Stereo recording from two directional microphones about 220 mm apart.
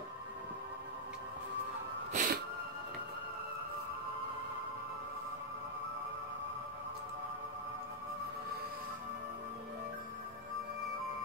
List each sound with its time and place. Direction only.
2.1 s music: 40° right (ahead or behind)